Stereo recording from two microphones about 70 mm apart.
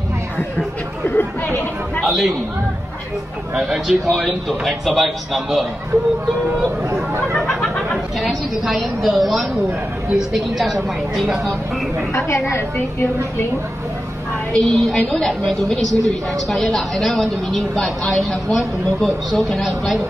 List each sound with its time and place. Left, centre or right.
1.0 s speech: left
2.0 s a woman's voice: centre
3.5 s a woman's voice: centre
7.4 s a woman's voice: centre
10.3 s a woman's voice: centre
12.3 s a woman's voice: left
14.5 s a woman's voice: centre